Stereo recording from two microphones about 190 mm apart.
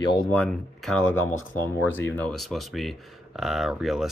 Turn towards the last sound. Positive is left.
turn(degrees=0)  # may be behind; listen again after turning